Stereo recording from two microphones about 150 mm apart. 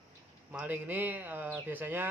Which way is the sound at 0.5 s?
10° right (ahead or behind).